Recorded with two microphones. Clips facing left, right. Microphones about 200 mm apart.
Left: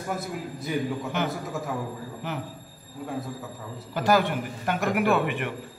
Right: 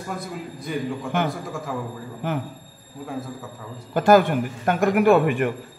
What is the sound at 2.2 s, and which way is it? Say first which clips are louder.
Speech: right 7 dB; 50° right (ahead or behind).